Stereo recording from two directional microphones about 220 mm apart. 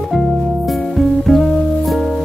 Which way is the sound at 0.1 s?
Centre (ahead or behind).